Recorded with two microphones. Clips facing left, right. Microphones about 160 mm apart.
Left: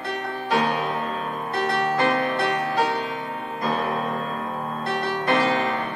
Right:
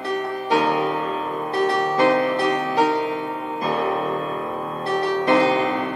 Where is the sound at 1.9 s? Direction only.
30° right (ahead or behind).